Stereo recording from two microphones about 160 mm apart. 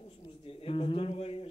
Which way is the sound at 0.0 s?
35° left (ahead or behind).